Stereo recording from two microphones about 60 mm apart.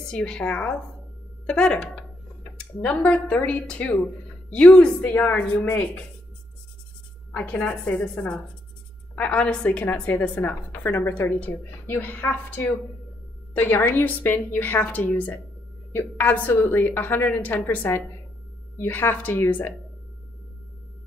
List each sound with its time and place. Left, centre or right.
0.0 s a woman's voice: centre
2.5 s a sound: centre
3.0 s a woman's voice: left
7.3 s a woman's voice: left